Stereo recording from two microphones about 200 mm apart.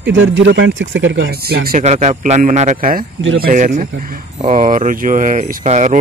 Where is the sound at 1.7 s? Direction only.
35° right (ahead or behind).